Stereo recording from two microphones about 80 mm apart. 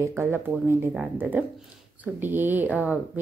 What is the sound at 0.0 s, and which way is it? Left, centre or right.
A woman's voice, right.